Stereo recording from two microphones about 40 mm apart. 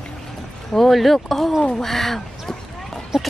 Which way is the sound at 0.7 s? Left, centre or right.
Centre.